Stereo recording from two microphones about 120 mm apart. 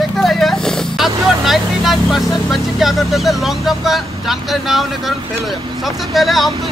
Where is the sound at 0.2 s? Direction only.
Centre (ahead or behind).